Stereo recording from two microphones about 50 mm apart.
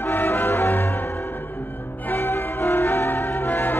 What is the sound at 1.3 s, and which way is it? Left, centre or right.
Music, left.